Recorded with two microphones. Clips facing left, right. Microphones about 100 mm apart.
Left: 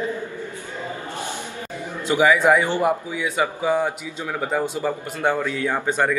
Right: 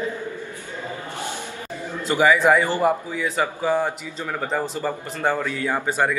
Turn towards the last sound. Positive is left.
turn(degrees=-5)  # may be behind; listen again after turning